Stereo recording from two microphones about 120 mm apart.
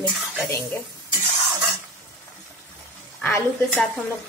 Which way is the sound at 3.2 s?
15° left (ahead or behind).